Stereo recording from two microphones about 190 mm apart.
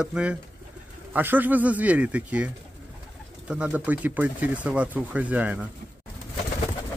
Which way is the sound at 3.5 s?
5° right (ahead or behind).